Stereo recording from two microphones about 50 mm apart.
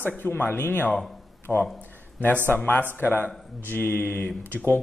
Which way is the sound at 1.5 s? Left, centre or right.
Left.